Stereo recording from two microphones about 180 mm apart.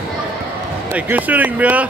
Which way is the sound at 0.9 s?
10° right (ahead or behind).